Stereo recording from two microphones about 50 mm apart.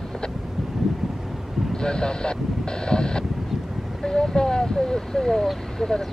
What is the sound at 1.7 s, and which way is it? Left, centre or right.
Vehicle, centre.